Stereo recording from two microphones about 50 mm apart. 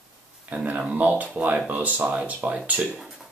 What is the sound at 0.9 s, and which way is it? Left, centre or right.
Speech, right.